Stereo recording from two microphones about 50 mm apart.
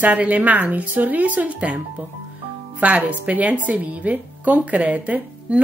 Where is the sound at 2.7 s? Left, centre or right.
Right.